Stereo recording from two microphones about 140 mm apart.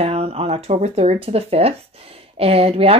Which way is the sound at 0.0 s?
45° right (ahead or behind).